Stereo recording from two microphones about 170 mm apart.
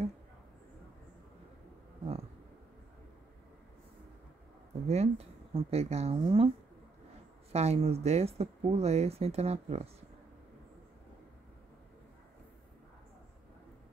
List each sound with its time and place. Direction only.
4.8 s speech: 40° right (ahead or behind)
7.5 s speech: 40° right (ahead or behind)